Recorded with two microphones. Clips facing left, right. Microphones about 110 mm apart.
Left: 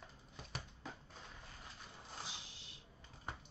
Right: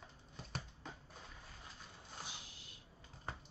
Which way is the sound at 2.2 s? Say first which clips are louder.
Even; 30° left (ahead or behind).